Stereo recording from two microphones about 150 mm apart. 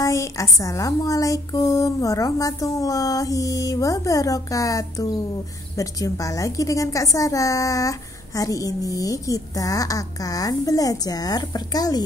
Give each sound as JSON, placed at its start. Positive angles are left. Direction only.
{"t": 0.0, "sound": "a woman's voice", "side_deg": 20}